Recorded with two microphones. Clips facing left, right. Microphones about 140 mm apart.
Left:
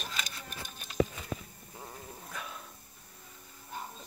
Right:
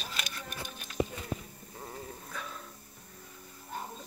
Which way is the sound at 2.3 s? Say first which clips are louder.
Even; 10° left (ahead or behind).